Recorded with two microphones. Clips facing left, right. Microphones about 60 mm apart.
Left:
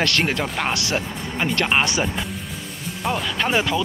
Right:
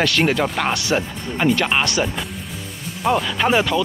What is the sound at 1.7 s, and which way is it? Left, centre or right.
Speech, centre.